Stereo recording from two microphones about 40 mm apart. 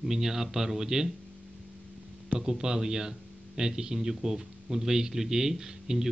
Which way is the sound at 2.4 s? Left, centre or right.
Centre.